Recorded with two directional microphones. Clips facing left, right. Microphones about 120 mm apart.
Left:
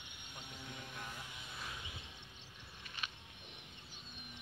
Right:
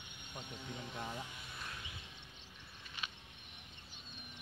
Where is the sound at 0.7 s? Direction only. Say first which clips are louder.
Right 6 dB; 25° right (ahead or behind).